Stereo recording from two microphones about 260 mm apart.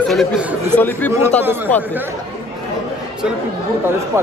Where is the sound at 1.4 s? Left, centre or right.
Centre.